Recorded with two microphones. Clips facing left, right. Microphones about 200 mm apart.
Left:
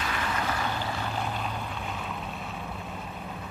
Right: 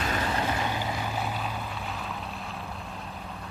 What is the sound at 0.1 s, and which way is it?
Vehicle, 25° right (ahead or behind).